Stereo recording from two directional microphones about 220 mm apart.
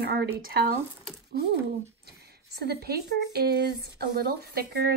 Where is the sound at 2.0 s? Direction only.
45° right (ahead or behind).